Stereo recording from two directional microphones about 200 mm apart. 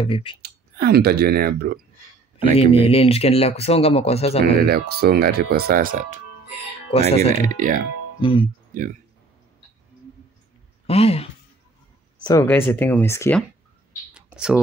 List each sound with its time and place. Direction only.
0.0 s speech: 25° left (ahead or behind)
0.4 s speech: 50° right (ahead or behind)
2.5 s speech: 30° left (ahead or behind)
4.6 s speech: 50° right (ahead or behind)
6.9 s speech: 30° left (ahead or behind)
7.3 s speech: 40° right (ahead or behind)
8.2 s speech: 25° left (ahead or behind)
8.7 s speech: 40° right (ahead or behind)
10.9 s speech: 30° left (ahead or behind)
12.2 s speech: 20° left (ahead or behind)
14.1 s a sound: 5° right (ahead or behind)